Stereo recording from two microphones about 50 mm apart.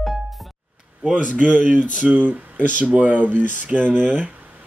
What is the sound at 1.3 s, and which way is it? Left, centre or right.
Speech, right.